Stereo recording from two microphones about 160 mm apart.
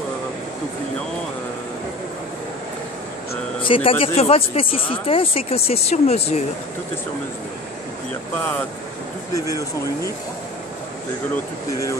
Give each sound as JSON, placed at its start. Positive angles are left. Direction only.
{"t": 3.6, "sound": "speech", "side_deg": 35}